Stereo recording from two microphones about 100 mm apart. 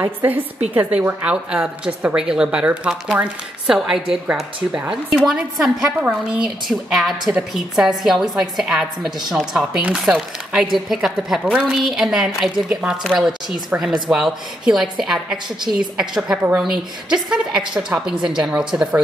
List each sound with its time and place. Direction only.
0.0 s a woman's voice: 15° right (ahead or behind); by 9.7 s centre (ahead or behind)
9.8 s a woman's voice: 15° right (ahead or behind)
14.0 s a woman's voice: 5° right (ahead or behind)